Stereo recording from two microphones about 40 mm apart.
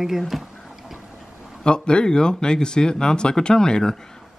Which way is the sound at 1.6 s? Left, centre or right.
Left.